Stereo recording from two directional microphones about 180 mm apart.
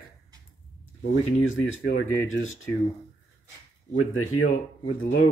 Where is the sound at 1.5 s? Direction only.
90° left.